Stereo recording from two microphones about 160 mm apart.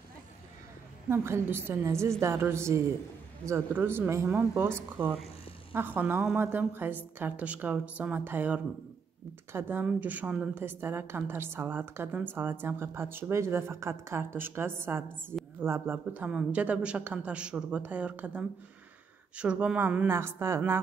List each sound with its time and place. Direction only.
1.1 s a woman's voice: 15° right (ahead or behind)